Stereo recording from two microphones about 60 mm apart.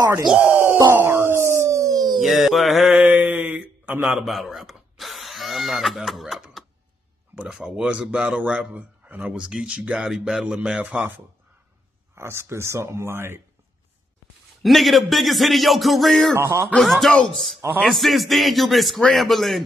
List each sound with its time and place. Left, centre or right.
0.3 s speech: centre
1.0 s howl: right
2.1 s a man's voice: centre
2.9 s a sound: centre
4.1 s speech: centre
7.7 s speech: centre
10.8 s a man's voice: right
12.2 s speech: right
14.6 s a man's voice: centre
16.3 s speech: right
16.8 s a man's voice: centre